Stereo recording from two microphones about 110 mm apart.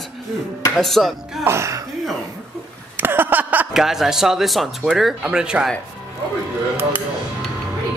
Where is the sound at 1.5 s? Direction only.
25° right (ahead or behind).